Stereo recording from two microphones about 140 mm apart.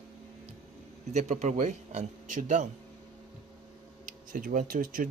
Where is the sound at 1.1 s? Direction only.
55° right (ahead or behind).